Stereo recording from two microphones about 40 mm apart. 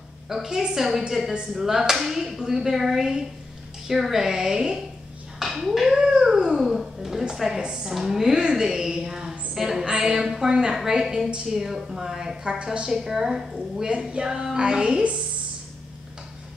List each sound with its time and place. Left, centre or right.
0.3 s speech: centre
5.9 s dog: centre
7.3 s a woman's voice: centre
7.9 s a woman's voice: centre
13.8 s a woman's voice: right